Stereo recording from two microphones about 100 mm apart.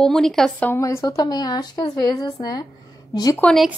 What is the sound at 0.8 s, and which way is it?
Speech, 30° left (ahead or behind).